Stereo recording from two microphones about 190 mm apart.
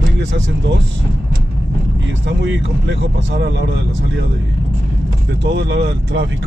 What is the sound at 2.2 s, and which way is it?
Speech, 65° right (ahead or behind).